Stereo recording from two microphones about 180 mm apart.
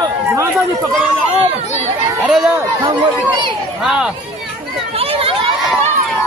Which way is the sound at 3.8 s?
5° right (ahead or behind).